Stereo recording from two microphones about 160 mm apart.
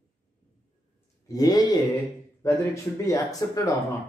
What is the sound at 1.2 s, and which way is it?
Speech, 25° left (ahead or behind).